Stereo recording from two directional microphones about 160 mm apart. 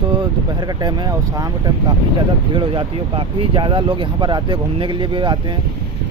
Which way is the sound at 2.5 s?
30° right (ahead or behind).